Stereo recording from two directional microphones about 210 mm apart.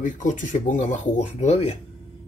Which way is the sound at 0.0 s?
35° left (ahead or behind).